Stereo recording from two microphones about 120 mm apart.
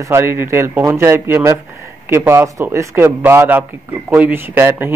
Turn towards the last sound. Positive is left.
turn(degrees=-20)  # may be behind; listen again after turning